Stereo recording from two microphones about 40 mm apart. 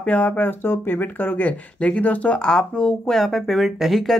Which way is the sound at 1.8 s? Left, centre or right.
Left.